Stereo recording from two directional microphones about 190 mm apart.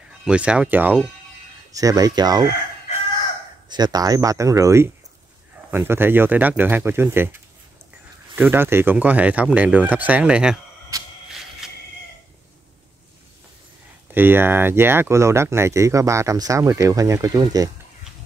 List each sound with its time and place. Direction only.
0.2 s speech: 5° right (ahead or behind); by 2.5 s 20° right (ahead or behind)
3.6 s speech: 20° right (ahead or behind); by 10.6 s 5° right (ahead or behind)
11.2 s a sound: centre (ahead or behind)
14.1 s speech: 10° right (ahead or behind)